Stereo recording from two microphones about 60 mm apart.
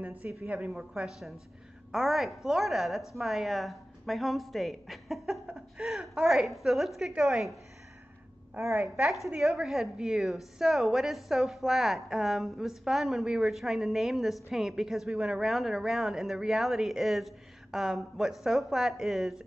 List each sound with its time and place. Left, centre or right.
0.0 s a woman's voice: right
0.7 s a woman's voice: centre
8.8 s a woman's voice: centre